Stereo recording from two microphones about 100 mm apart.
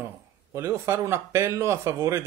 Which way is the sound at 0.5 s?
30° right (ahead or behind).